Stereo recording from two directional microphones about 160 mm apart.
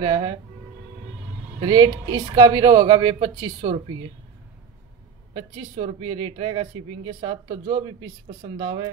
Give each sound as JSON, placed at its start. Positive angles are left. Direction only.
{"t": 0.0, "sound": "a woman's voice", "side_deg": -25}
{"t": 1.6, "sound": "a woman's voice", "side_deg": -25}
{"t": 5.3, "sound": "a woman's voice", "side_deg": -40}